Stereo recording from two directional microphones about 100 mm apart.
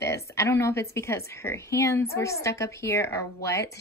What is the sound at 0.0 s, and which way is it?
Speech, 30° left (ahead or behind).